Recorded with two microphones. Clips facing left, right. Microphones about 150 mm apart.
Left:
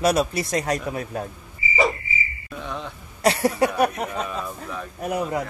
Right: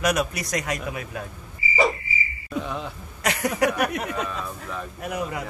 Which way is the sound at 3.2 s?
30° left (ahead or behind).